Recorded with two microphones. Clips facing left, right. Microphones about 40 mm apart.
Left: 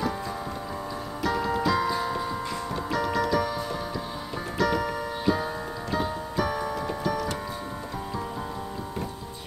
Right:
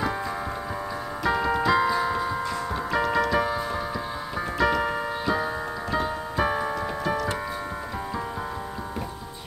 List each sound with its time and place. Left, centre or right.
1.2 s piano: centre
1.7 s music: centre
4.6 s keyboard: centre
5.9 s music: centre
6.3 s music: right